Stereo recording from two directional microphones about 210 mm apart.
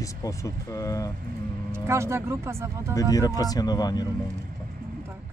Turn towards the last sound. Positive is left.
turn(degrees=20)  # may be behind; listen again after turning